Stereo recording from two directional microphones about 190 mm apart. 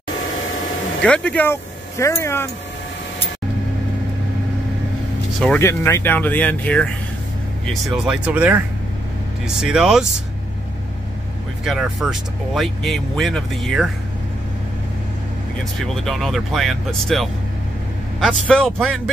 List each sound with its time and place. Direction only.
1.0 s speech: 5° left (ahead or behind)
5.4 s speech: 5° left (ahead or behind)
11.6 s speech: centre (ahead or behind)
15.8 s speech: centre (ahead or behind)